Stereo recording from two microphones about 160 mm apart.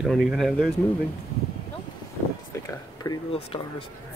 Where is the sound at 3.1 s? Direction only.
20° left (ahead or behind).